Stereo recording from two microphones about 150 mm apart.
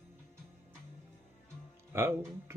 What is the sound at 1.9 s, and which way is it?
Music, 20° right (ahead or behind).